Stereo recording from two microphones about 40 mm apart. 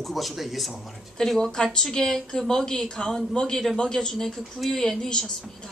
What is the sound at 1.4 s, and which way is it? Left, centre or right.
Speech, centre.